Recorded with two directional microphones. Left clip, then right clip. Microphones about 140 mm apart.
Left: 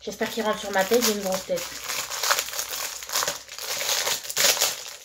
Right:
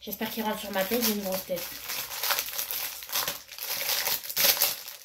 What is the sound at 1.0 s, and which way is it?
Crumpling, 25° right (ahead or behind).